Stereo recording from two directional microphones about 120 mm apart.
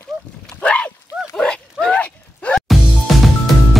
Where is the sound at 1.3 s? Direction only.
5° left (ahead or behind).